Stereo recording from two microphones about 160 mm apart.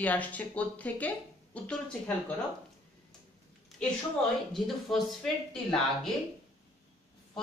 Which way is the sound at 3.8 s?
5° left (ahead or behind).